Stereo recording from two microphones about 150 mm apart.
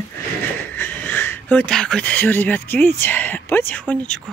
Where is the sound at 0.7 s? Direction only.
10° left (ahead or behind).